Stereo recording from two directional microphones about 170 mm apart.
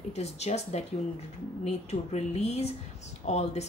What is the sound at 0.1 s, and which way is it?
A woman's voice, 40° left (ahead or behind).